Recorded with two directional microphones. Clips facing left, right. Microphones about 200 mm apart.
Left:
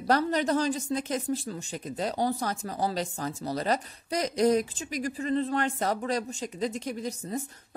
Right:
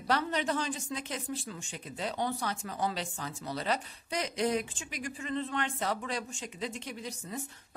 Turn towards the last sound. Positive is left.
turn(degrees=40)  # may be behind; listen again after turning